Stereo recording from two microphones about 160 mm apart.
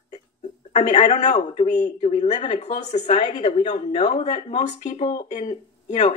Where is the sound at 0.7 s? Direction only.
45° left (ahead or behind).